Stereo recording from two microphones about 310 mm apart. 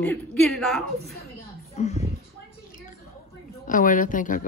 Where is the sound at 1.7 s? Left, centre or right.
Left.